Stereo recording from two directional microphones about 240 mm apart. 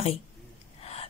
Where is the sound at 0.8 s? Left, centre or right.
Left.